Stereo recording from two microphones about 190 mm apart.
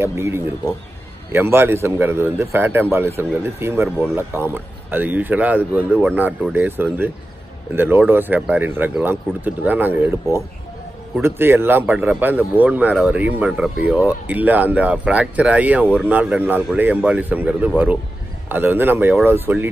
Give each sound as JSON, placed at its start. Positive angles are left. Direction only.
{"t": 0.0, "sound": "speech", "side_deg": -10}
{"t": 11.1, "sound": "speech", "side_deg": -10}